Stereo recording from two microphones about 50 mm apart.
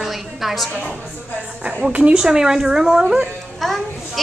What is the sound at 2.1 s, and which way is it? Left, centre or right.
Speech, centre.